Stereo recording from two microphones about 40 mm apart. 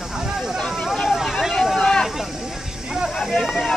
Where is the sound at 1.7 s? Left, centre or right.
Left.